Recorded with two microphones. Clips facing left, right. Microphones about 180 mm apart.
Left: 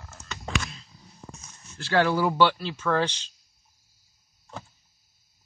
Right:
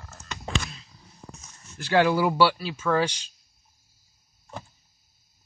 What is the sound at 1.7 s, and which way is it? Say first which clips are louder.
Speech: right 2 dB; 15° right (ahead or behind).